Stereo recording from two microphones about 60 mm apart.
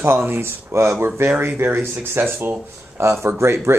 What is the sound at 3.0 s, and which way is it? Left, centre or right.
Speech, right.